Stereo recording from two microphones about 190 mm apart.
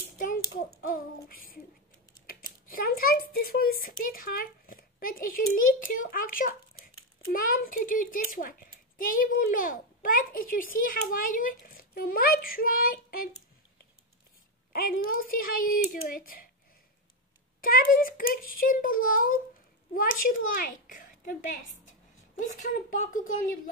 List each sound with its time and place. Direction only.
0.8 s a child's voice: 45° left (ahead or behind)
14.7 s a child's voice: 50° left (ahead or behind)
17.6 s a child's voice: 50° left (ahead or behind)